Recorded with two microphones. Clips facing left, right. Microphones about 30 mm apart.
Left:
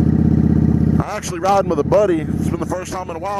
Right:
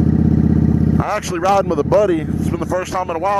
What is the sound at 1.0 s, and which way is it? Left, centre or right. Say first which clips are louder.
Speech: right 4 dB; centre.